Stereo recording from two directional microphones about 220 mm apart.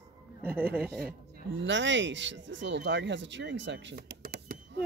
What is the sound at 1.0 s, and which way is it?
Speech, 45° right (ahead or behind).